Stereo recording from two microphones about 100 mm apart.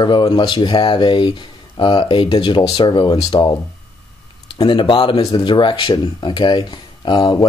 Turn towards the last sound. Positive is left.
turn(degrees=45)  # may be behind; listen again after turning